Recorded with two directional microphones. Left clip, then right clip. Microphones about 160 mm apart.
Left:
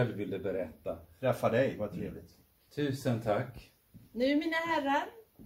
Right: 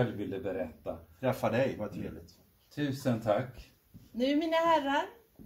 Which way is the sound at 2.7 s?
25° left (ahead or behind).